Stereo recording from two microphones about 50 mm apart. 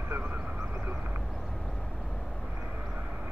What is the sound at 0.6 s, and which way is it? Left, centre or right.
Vehicle, right.